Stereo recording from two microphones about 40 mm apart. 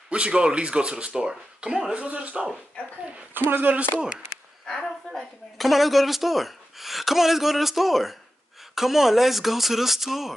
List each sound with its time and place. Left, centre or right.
0.1 s speech: right
3.3 s speech: right
4.6 s a woman's voice: centre